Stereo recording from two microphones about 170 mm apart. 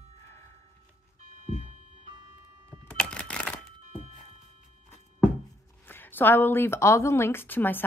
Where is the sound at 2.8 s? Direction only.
5° left (ahead or behind).